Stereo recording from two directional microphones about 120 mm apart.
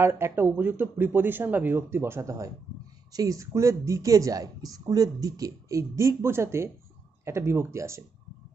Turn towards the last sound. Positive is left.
turn(degrees=-25)  # may be behind; listen again after turning